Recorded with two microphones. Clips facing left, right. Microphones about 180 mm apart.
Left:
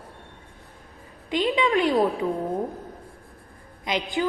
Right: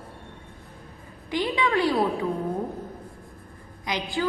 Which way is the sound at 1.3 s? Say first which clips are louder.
Left 2 dB; 20° left (ahead or behind).